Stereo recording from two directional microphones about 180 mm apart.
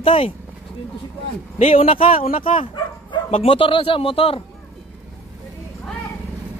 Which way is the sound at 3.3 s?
35° left (ahead or behind).